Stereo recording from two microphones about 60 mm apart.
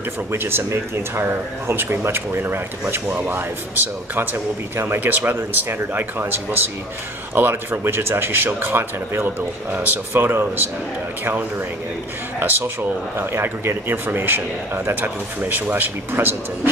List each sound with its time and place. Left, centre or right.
0.3 s speech: right
12.4 s speech: right